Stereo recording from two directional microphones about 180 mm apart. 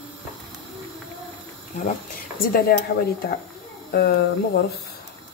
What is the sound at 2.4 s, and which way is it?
Speech, 55° left (ahead or behind).